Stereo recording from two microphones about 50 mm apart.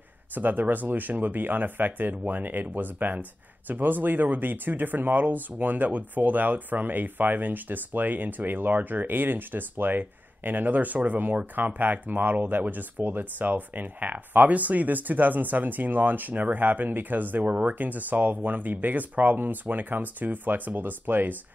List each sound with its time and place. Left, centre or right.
0.3 s speech: right